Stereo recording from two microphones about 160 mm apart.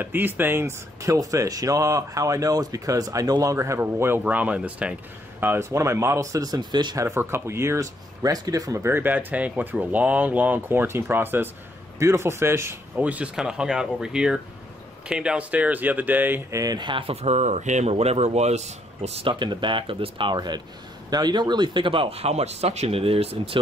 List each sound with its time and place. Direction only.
0.0 s speech: 10° right (ahead or behind)
7.1 s speech: 15° right (ahead or behind); by 23.6 s 35° right (ahead or behind)